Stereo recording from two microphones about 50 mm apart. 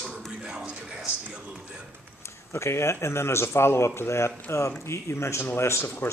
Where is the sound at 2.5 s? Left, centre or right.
Left.